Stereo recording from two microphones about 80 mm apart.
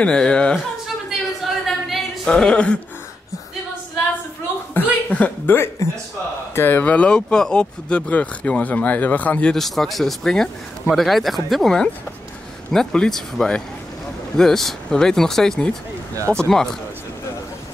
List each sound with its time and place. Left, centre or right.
0.0 s speech: centre
1.4 s a sound: centre
4.7 s a sound: left
5.1 s speech: centre
5.8 s a man's voice: left
6.5 s speech: left
9.5 s speech: centre